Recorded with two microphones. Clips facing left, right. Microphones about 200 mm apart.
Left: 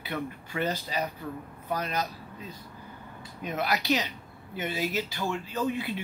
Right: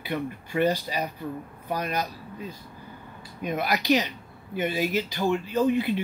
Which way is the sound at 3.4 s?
15° right (ahead or behind).